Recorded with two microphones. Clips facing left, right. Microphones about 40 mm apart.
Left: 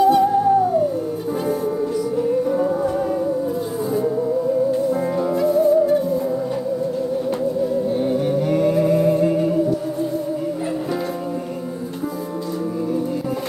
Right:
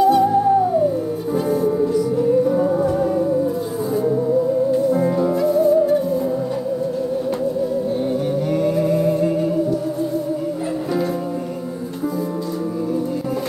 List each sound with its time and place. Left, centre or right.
0.0 s music: left
0.3 s music: centre